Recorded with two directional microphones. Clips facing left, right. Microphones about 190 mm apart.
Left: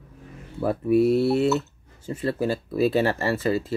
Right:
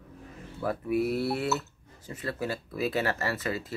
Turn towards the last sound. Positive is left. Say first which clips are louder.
# left 8 dB
turn(degrees=30)  # may be behind; listen again after turning